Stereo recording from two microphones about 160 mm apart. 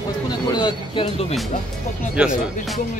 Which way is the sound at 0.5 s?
30° left (ahead or behind).